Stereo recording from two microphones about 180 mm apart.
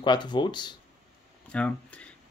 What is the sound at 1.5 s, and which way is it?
Speech, 5° left (ahead or behind).